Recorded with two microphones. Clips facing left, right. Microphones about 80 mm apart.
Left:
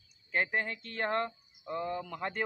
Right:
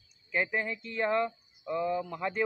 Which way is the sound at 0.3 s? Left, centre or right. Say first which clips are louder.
Right 1 dB; left.